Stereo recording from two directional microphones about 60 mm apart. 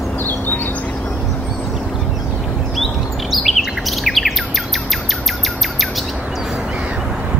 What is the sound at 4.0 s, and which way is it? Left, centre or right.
Bird, centre.